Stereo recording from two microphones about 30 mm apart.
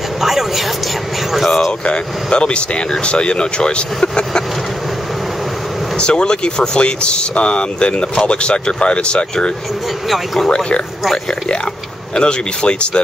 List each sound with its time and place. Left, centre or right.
0.2 s vehicle: centre
2.3 s speech: left
5.9 s speech: left
10.0 s speech: centre
12.2 s speech: left